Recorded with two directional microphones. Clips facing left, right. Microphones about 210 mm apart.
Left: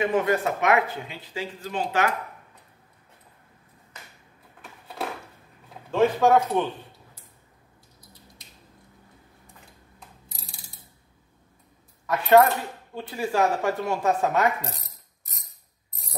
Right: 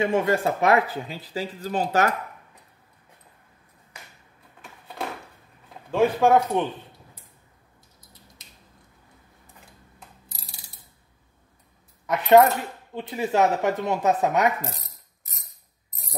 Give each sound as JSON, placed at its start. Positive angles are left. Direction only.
{"t": 0.0, "sound": "speech", "side_deg": -25}
{"t": 3.9, "sound": "finger snapping", "side_deg": -10}
{"t": 4.6, "sound": "a sound", "side_deg": 0}
{"t": 5.9, "sound": "speech", "side_deg": -10}
{"t": 12.1, "sound": "speech", "side_deg": -20}